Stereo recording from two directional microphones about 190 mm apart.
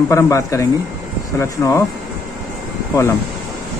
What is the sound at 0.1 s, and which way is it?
Speech, 15° left (ahead or behind).